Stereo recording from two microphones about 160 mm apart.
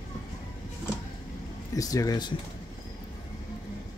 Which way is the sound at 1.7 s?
20° left (ahead or behind).